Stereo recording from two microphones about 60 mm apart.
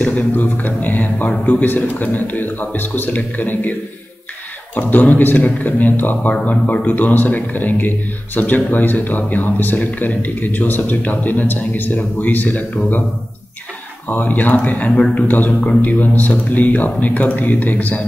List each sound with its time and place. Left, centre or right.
0.0 s a sound: left
1.4 s speech: left
4.7 s speech: left
14.0 s speech: left